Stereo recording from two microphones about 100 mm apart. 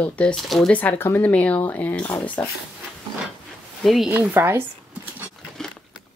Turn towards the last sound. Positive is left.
turn(degrees=-20)  # may be behind; listen again after turning